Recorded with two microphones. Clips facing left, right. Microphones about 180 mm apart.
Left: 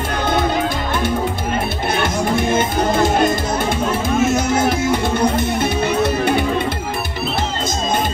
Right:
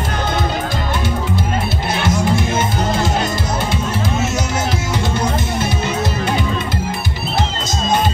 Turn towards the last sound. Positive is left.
turn(degrees=60)  # may be behind; listen again after turning